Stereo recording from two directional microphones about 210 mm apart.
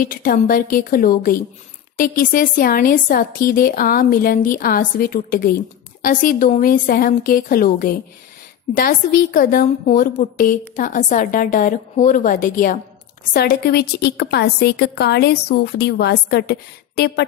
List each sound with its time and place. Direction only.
0.0 s a woman's voice: 40° left (ahead or behind)